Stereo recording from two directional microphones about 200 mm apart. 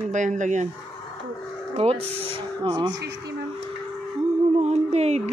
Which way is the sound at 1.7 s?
30° right (ahead or behind).